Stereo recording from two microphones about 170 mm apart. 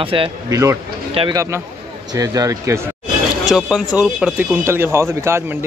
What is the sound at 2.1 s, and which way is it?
Speech, 20° right (ahead or behind).